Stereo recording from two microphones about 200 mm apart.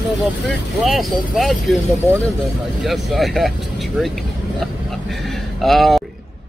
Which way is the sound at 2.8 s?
Centre (ahead or behind).